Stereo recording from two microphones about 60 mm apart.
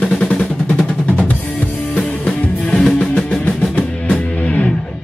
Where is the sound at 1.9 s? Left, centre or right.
Centre.